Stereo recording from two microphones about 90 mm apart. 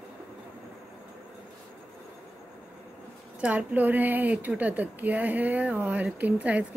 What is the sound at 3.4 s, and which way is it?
A woman's voice, 15° right (ahead or behind).